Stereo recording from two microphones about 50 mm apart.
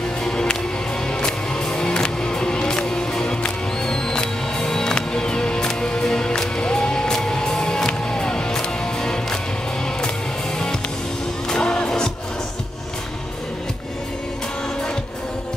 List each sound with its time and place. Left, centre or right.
0.2 s music: centre
11.4 s music: centre